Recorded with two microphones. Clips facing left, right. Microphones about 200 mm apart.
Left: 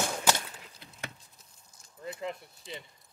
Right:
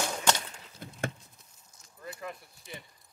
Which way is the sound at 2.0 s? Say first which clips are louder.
Left 4 dB; 20° left (ahead or behind).